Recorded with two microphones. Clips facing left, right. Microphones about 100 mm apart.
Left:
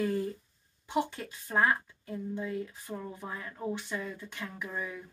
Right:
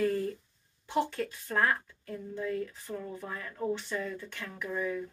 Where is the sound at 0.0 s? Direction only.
20° left (ahead or behind).